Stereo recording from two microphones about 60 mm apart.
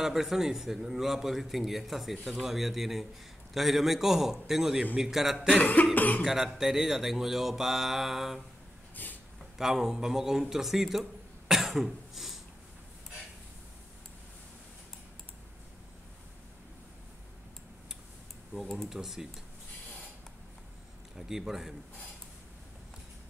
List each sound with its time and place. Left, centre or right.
0.0 s a man's voice: centre
5.6 s cough: left
5.9 s speech: left
6.2 s a man's voice: centre
8.9 s a sound: left
9.6 s speech: centre
10.5 s cough: centre
18.5 s speech: centre
21.3 s speech: centre